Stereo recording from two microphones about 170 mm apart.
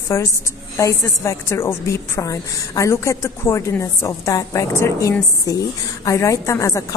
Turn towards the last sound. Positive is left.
turn(degrees=20)  # may be behind; listen again after turning